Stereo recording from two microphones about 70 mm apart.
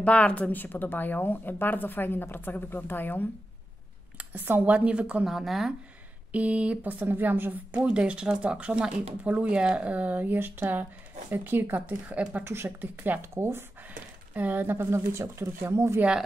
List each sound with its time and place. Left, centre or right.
0.0 s a woman's voice: centre
4.2 s speech: right
5.2 s speech: centre
6.3 s speech: centre
12.4 s speech: right
12.9 s speech: right
13.2 s speech: right
14.3 s speech: right